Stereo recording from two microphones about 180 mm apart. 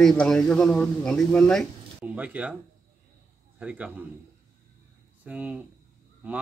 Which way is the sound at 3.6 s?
5° right (ahead or behind).